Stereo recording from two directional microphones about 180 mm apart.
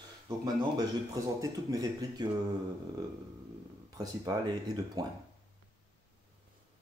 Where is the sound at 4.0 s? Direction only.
20° right (ahead or behind).